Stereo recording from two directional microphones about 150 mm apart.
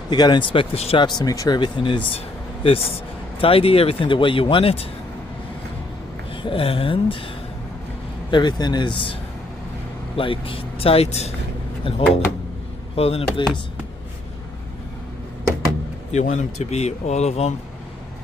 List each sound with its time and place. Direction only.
0.1 s speech: 30° left (ahead or behind)
1.0 s speech: 25° left (ahead or behind)
6.3 s speech: 35° left (ahead or behind)
8.3 s speech: 30° left (ahead or behind)
10.1 s speech: 35° left (ahead or behind)
16.1 s speech: 50° left (ahead or behind)